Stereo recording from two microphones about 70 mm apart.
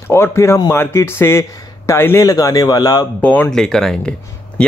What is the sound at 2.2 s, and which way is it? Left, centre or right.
Speech, left.